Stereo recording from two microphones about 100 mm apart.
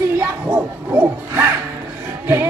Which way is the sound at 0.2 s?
20° right (ahead or behind).